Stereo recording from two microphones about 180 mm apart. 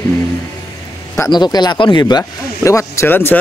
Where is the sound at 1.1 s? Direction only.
20° left (ahead or behind).